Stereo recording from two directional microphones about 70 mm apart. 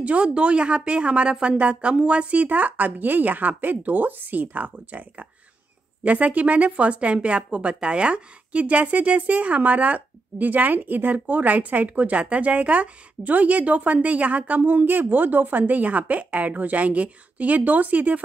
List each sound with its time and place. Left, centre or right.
0.0 s speech: centre